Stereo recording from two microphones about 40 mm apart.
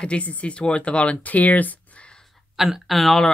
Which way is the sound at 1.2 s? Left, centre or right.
Left.